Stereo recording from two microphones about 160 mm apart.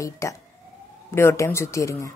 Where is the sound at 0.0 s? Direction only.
20° left (ahead or behind).